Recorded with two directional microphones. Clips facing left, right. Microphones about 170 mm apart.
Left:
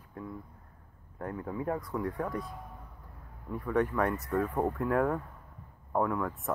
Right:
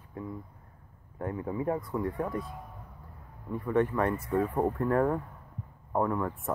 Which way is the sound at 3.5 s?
Centre (ahead or behind).